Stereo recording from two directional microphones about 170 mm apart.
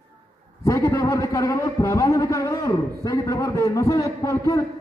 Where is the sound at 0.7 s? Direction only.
20° left (ahead or behind).